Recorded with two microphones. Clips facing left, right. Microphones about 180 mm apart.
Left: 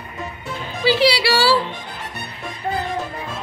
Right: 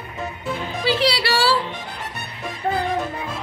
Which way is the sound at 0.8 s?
5° left (ahead or behind).